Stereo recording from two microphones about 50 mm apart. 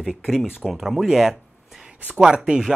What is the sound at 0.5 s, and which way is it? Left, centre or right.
Speech, centre.